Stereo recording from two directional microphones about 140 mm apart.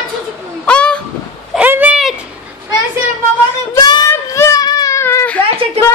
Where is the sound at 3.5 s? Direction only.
25° left (ahead or behind).